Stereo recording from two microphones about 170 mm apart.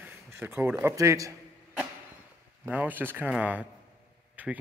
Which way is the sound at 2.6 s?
10° right (ahead or behind).